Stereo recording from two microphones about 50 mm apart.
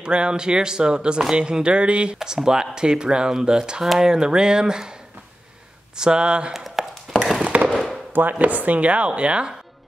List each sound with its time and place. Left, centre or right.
0.0 s speech: centre
5.9 s speech: centre
6.5 s a sound: centre
7.5 s fireworks: right
8.1 s speech: right